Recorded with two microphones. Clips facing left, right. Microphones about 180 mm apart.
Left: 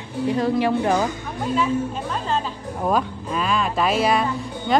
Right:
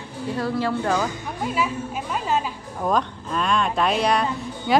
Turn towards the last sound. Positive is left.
turn(degrees=0)  # may be behind; listen again after turning